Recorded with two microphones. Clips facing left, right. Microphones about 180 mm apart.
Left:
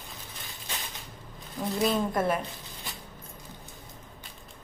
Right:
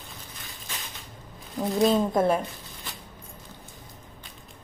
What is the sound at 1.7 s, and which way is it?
Speech, 25° right (ahead or behind).